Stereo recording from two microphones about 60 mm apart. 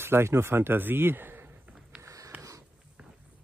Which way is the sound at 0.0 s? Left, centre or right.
Right.